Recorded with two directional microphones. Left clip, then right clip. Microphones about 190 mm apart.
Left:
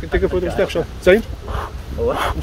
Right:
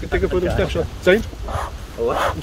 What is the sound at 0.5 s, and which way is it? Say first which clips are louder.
Speech: left 2 dB; 30° left (ahead or behind).